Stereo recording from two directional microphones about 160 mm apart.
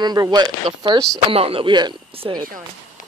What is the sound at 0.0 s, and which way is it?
Speech, 25° right (ahead or behind).